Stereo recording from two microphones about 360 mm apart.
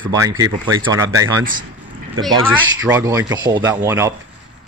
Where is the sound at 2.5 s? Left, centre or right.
Centre.